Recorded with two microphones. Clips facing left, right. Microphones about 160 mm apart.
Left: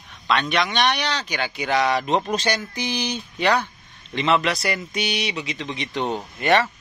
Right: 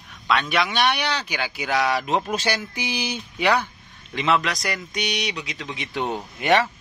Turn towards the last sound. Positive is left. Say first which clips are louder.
# even
turn(degrees=-10)  # may be behind; listen again after turning